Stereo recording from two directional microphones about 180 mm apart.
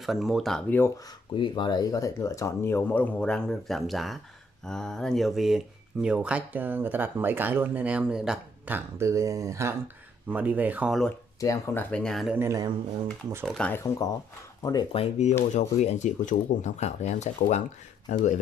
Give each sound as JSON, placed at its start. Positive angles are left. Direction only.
{"t": 0.0, "sound": "speech", "side_deg": 0}
{"t": 1.3, "sound": "speech", "side_deg": 25}
{"t": 11.3, "sound": "speech", "side_deg": 15}
{"t": 12.4, "sound": "speech", "side_deg": -20}
{"t": 13.5, "sound": "speech", "side_deg": 5}